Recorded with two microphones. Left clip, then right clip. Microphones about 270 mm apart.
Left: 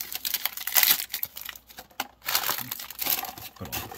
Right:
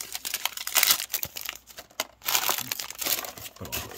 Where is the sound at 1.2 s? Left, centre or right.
Right.